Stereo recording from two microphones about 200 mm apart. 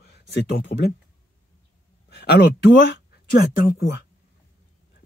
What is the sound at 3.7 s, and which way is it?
Speech, 55° left (ahead or behind).